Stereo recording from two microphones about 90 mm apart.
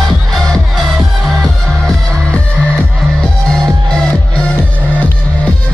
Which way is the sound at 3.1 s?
10° left (ahead or behind).